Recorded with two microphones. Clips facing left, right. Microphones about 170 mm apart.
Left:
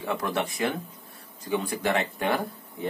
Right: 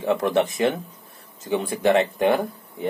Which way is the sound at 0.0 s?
20° right (ahead or behind).